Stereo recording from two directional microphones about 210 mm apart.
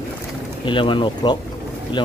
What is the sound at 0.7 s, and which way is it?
Speech, 25° left (ahead or behind).